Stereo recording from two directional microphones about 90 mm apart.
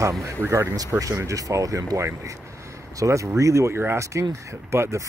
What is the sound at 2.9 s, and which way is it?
Speech, 35° right (ahead or behind).